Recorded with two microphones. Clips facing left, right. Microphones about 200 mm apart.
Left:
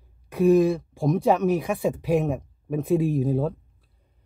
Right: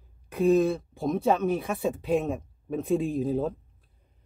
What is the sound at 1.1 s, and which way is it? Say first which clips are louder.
Speech: left 4 dB; 15° left (ahead or behind).